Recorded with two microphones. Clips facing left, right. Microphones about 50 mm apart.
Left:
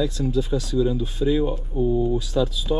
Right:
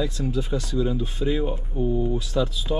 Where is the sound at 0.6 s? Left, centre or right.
Right.